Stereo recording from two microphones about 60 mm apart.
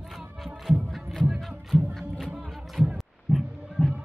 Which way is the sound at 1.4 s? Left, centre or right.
Centre.